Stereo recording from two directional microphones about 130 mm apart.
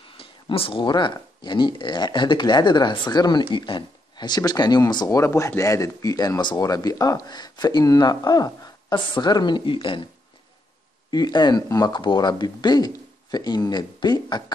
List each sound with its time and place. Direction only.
0.2 s speech: 45° left (ahead or behind)
11.1 s speech: 30° left (ahead or behind)